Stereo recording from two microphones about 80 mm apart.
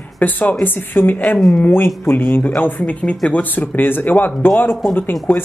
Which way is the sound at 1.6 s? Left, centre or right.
Left.